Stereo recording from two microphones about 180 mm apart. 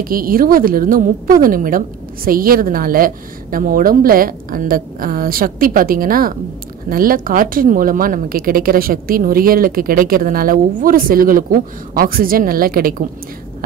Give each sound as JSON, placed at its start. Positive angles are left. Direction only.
{"t": 0.0, "sound": "a woman's voice", "side_deg": -55}